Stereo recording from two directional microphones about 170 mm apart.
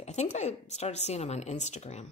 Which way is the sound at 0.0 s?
40° left (ahead or behind).